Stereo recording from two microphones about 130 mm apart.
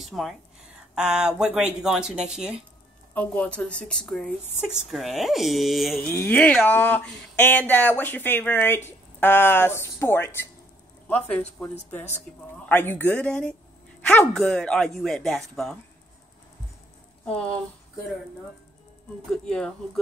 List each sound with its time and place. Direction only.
0.0 s speech: centre (ahead or behind)
3.2 s speech: 10° left (ahead or behind)
6.0 s speech: 15° left (ahead or behind)